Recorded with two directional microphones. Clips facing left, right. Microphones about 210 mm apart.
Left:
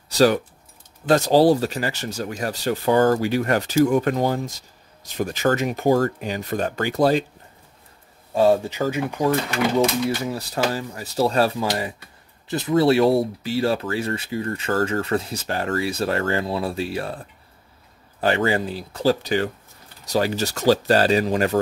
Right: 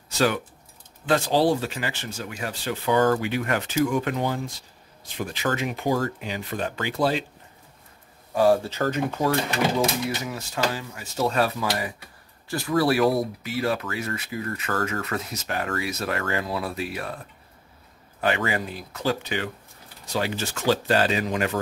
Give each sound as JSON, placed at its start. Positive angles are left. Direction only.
{"t": 0.1, "sound": "keys jangling", "side_deg": 35}
{"t": 1.0, "sound": "speech", "side_deg": 40}
{"t": 8.3, "sound": "speech", "side_deg": 25}
{"t": 8.8, "sound": "speech", "side_deg": 10}
{"t": 10.0, "sound": "speech", "side_deg": 35}
{"t": 18.2, "sound": "speech", "side_deg": 30}